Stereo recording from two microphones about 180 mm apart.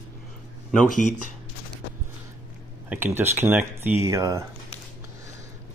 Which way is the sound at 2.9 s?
10° right (ahead or behind).